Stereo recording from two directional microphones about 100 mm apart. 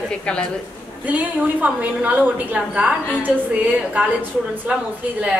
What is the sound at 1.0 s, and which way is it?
A woman's voice, 15° right (ahead or behind).